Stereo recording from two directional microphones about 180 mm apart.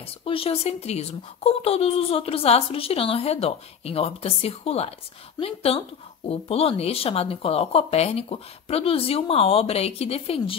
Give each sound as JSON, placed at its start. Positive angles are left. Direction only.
{"t": 0.0, "sound": "speech", "side_deg": 30}